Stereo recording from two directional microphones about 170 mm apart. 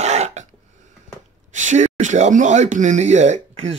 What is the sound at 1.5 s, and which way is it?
Speech, 45° right (ahead or behind).